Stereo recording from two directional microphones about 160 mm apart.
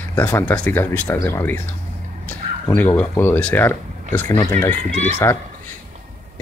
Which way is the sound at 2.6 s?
15° left (ahead or behind).